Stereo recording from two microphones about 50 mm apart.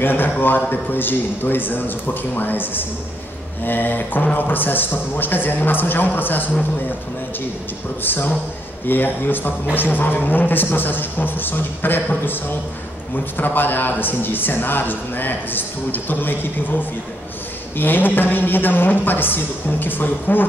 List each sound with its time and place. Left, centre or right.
0.0 s a man's voice: left
8.0 s a man's voice: left
13.4 s a man's voice: left